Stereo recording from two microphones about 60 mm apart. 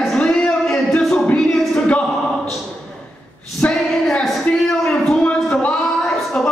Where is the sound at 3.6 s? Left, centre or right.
Centre.